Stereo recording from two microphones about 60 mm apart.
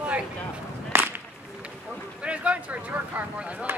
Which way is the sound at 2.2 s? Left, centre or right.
Right.